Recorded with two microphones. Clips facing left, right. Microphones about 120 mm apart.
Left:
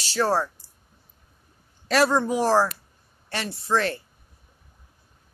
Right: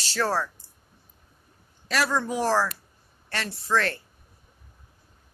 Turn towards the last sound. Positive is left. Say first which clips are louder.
# left 2 dB
turn(degrees=15)  # may be behind; listen again after turning